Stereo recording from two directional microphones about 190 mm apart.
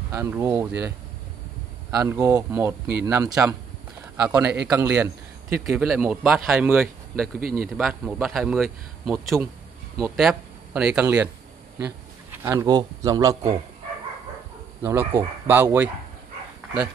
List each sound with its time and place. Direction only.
0.1 s a man's voice: 10° right (ahead or behind)
4.2 s a man's voice: 5° right (ahead or behind)
7.3 s a man's voice: 50° right (ahead or behind)
7.7 s a man's voice: centre (ahead or behind); by 13.6 s 15° right (ahead or behind)
14.8 s a man's voice: 10° right (ahead or behind)